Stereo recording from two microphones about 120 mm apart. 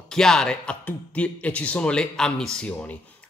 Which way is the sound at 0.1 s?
5° left (ahead or behind).